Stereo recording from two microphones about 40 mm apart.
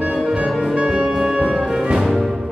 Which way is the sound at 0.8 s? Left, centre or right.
Right.